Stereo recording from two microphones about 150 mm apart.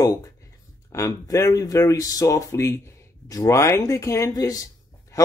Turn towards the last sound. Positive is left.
turn(degrees=25)  # may be behind; listen again after turning